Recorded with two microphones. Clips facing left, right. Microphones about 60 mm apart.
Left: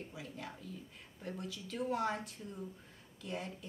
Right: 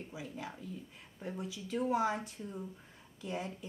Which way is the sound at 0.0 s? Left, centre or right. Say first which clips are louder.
Right 3 dB; centre.